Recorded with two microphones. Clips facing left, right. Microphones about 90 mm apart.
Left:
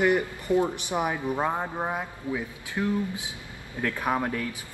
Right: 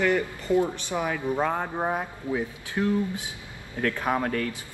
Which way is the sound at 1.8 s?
20° right (ahead or behind).